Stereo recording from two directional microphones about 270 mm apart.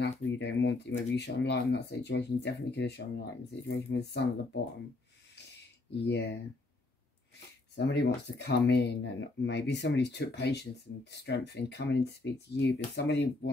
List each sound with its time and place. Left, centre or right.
0.0 s speech: left
6.0 s speech: left
7.7 s speech: left